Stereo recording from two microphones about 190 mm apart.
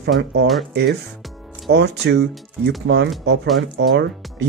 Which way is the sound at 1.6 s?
65° right (ahead or behind).